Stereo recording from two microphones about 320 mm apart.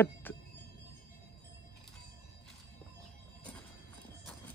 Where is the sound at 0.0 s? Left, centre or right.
Centre.